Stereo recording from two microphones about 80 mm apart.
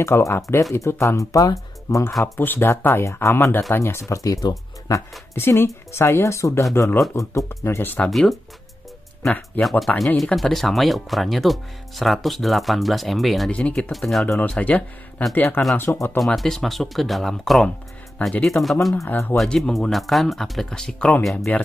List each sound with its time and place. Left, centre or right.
0.0 s speech: left
2.3 s speech: left
5.3 s speech: left
8.1 s speech: centre
9.6 s speech: centre
13.5 s speech: centre
13.9 s speech: centre
14.5 s speech: centre
16.2 s speech: centre